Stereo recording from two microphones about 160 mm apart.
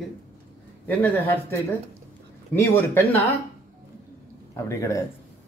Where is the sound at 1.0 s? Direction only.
10° left (ahead or behind).